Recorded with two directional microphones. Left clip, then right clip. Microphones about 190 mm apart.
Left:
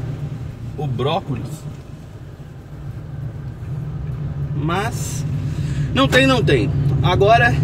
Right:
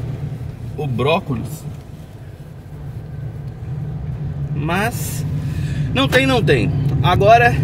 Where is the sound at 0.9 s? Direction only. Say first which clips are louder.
Right 4 dB; 30° right (ahead or behind).